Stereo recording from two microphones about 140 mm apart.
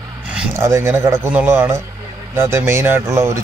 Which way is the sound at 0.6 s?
20° right (ahead or behind).